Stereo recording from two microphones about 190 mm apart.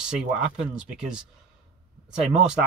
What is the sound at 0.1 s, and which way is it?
Speech, 5° right (ahead or behind).